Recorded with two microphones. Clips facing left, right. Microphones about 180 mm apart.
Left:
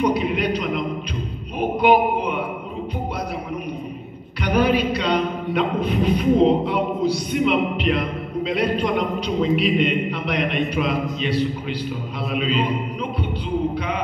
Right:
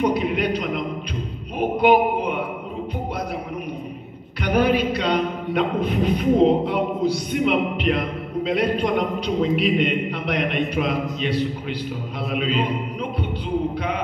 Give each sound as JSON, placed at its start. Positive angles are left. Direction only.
{"t": 0.0, "sound": "a sound", "side_deg": -50}
{"t": 4.4, "sound": "vocal music", "side_deg": -50}
{"t": 8.5, "sound": "a man's voice", "side_deg": -45}